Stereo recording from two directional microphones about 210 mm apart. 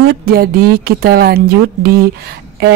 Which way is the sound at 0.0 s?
45° right (ahead or behind).